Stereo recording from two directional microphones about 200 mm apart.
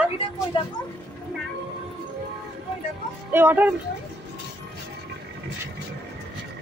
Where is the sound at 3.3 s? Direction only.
10° right (ahead or behind).